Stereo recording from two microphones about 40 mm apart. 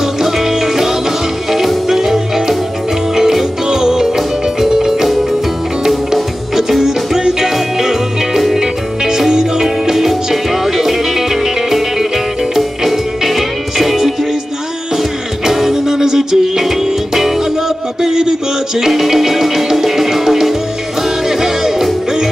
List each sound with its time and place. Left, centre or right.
0.2 s music: centre
15.4 s music: centre
18.0 s music: centre